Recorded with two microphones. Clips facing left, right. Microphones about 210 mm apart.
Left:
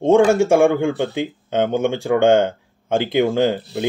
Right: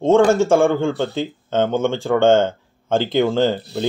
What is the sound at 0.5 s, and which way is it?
Speech, 15° left (ahead or behind).